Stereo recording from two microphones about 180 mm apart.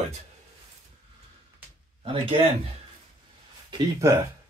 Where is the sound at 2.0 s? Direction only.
30° right (ahead or behind).